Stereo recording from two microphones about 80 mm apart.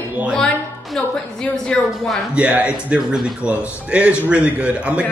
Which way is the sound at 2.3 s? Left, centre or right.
Centre.